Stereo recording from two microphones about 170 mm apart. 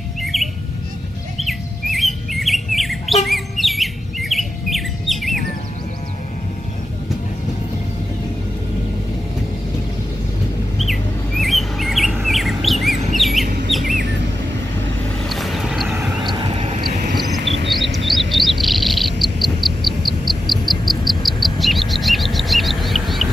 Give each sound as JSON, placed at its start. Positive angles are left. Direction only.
{"t": 0.2, "sound": "bird", "side_deg": 0}
{"t": 10.8, "sound": "bird", "side_deg": 0}
{"t": 13.7, "sound": "chirp", "side_deg": 0}
{"t": 15.2, "sound": "vehicle", "side_deg": 0}
{"t": 16.3, "sound": "vehicle", "side_deg": -30}
{"t": 17.9, "sound": "a sound", "side_deg": 0}
{"t": 18.3, "sound": "bird", "side_deg": 0}
{"t": 20.8, "sound": "cricket", "side_deg": 0}